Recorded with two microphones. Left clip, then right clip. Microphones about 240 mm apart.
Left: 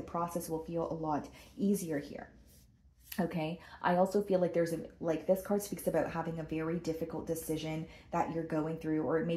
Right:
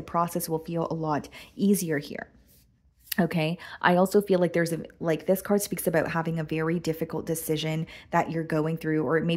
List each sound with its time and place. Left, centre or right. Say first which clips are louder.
0.0 s speech: right 9 dB; right